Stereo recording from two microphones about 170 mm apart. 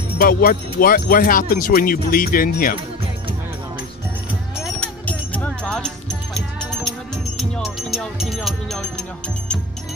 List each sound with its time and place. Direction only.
0.2 s speech: 60° left (ahead or behind)
4.6 s music: 5° left (ahead or behind)
7.3 s speech: centre (ahead or behind)